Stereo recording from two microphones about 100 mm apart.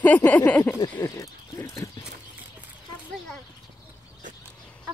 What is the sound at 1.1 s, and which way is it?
Speech, 30° left (ahead or behind).